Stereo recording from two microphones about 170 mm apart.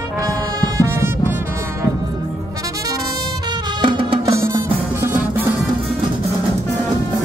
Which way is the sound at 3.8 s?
30° right (ahead or behind).